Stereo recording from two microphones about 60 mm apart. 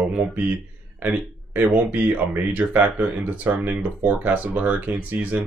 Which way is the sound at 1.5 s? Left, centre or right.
Right.